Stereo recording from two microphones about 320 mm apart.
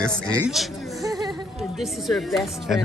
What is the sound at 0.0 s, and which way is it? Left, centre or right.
Speech, centre.